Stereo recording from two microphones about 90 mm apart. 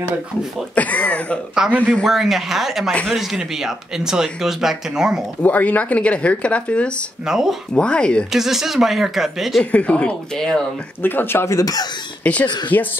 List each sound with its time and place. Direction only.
0.7 s speech: 15° left (ahead or behind)
1.5 s speech: 5° right (ahead or behind)
5.4 s speech: 20° left (ahead or behind)
7.2 s speech: 5° right (ahead or behind)
7.7 s speech: 10° left (ahead or behind)
8.3 s speech: 5° right (ahead or behind)
9.6 s speech: 15° left (ahead or behind)
11.5 s speech: 45° left (ahead or behind)
12.2 s speech: 15° left (ahead or behind)
12.4 s speech: 55° left (ahead or behind)